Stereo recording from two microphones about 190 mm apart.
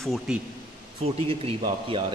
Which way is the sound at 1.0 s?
30° right (ahead or behind).